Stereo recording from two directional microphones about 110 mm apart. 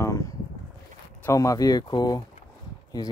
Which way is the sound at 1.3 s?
30° left (ahead or behind).